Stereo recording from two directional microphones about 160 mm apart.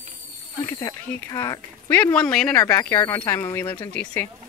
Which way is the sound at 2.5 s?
15° left (ahead or behind).